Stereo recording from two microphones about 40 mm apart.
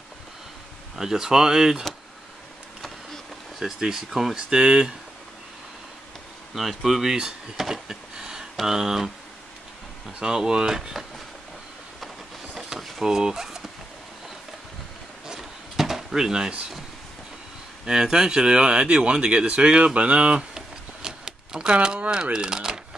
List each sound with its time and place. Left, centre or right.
0.9 s speech: centre
3.5 s speech: centre
4.6 s speech: right
6.5 s speech: centre
7.5 s a sound: centre
8.5 s speech: centre
10.1 s speech: centre
12.5 s drawer open or close: centre
13.0 s speech: centre
15.7 s drawer open or close: centre
17.8 s speech: centre
20.5 s a sound: centre
22.1 s speech: centre